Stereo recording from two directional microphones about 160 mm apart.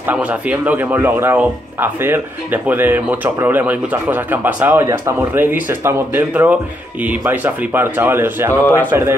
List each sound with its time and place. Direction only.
0.0 s speech: 10° right (ahead or behind)